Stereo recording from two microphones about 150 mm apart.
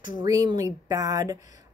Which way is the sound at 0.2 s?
25° right (ahead or behind).